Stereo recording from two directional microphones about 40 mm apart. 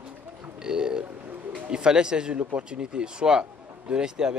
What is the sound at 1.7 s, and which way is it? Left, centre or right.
Speech, right.